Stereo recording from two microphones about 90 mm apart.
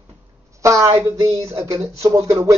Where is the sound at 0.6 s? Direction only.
35° right (ahead or behind).